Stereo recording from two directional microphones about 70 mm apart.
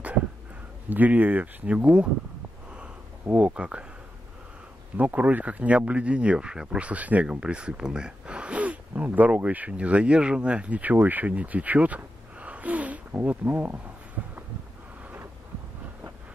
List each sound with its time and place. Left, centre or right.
0.8 s speech: right
3.3 s speech: centre
4.9 s speech: right